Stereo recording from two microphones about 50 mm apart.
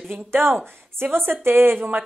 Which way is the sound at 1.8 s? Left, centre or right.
Right.